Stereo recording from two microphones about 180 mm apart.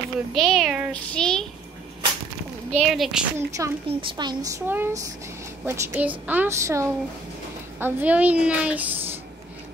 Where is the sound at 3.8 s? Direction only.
30° right (ahead or behind); by 9.0 s 10° right (ahead or behind).